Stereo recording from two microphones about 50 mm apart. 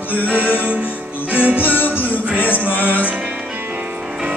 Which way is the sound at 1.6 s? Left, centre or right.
Left.